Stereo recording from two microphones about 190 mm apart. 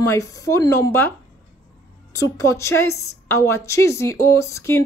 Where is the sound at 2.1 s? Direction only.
15° left (ahead or behind).